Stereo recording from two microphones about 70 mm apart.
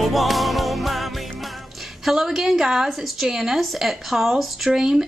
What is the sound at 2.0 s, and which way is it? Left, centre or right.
A woman's voice, centre.